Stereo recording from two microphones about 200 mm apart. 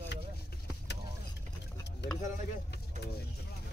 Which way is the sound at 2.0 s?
60° left (ahead or behind).